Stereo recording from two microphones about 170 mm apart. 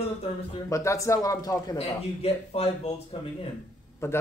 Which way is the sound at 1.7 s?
35° left (ahead or behind).